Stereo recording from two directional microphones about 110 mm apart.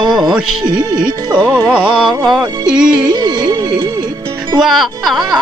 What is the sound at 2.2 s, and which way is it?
Speech, 5° right (ahead or behind).